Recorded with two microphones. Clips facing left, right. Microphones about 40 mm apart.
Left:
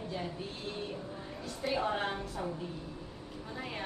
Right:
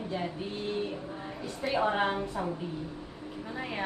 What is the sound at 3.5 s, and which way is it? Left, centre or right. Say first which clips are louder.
Speech: right 4 dB; centre.